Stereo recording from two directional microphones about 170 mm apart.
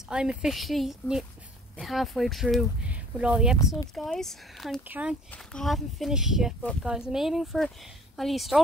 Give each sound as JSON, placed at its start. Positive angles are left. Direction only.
{"t": 0.1, "sound": "speech", "side_deg": -5}
{"t": 4.8, "sound": "speech", "side_deg": -10}
{"t": 5.3, "sound": "speech", "side_deg": 5}